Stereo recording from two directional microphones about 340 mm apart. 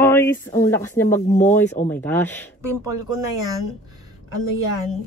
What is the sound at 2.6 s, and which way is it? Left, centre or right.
Speech, centre.